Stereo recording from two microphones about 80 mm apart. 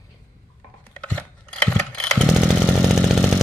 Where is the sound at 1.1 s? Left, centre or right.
Centre.